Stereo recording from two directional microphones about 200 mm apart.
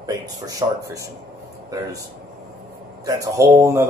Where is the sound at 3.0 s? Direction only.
15° right (ahead or behind).